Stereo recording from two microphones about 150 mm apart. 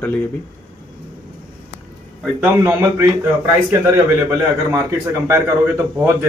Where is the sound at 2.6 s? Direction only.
20° right (ahead or behind).